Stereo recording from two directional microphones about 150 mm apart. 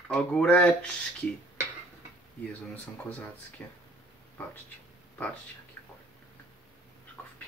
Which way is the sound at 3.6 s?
10° left (ahead or behind).